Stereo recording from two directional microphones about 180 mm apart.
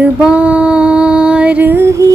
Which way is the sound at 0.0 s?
5° right (ahead or behind).